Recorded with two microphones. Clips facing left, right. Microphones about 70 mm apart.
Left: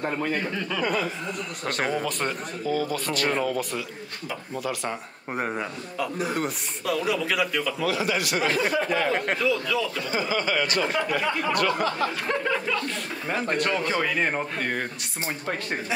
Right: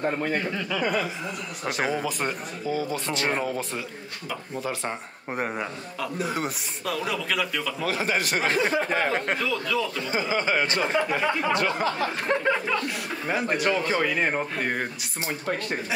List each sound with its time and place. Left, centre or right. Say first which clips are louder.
1.6 s speech: right 1 dB; centre
2.9 s speech: left 1 dB; right
5.3 s a man's voice: even; centre
7.8 s a man's voice: right 1 dB; right
8.5 s speech: right 1 dB; right
8.8 s a man's voice: left 1 dB; right
9.1 s a man's voice: left 2 dB; centre
10.1 s speech: right 1 dB; right
12.9 s a man's voice: right 1 dB; centre